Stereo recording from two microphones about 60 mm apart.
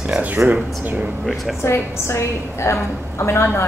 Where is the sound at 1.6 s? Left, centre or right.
Left.